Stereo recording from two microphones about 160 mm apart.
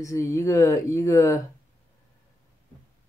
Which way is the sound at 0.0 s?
20° left (ahead or behind).